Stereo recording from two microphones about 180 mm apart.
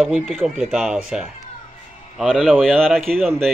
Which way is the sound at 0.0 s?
Centre (ahead or behind).